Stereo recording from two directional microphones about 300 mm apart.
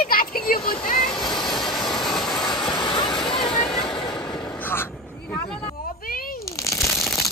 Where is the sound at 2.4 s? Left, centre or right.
Centre.